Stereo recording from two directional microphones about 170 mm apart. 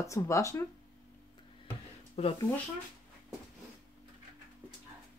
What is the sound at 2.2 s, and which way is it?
Speech, 35° left (ahead or behind).